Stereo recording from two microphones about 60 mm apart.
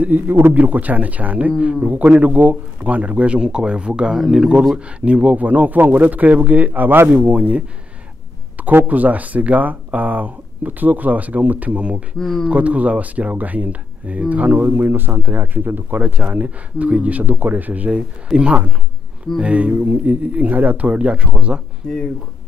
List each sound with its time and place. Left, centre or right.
0.0 s speech: right
12.2 s speech: centre
12.4 s speech: right
21.8 s speech: centre